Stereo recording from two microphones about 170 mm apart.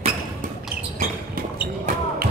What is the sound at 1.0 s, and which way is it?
Basketball bounce, 55° right (ahead or behind).